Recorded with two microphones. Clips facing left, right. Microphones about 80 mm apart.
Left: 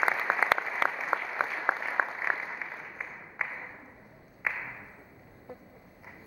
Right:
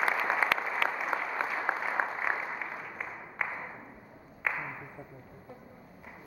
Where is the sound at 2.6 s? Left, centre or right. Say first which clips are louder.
Right 2 dB; centre.